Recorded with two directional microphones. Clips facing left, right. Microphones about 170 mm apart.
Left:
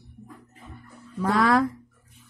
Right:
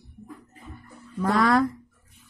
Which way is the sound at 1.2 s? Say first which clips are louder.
Even; centre (ahead or behind).